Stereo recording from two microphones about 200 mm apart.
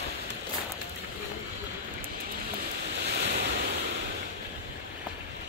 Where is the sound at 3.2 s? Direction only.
55° right (ahead or behind).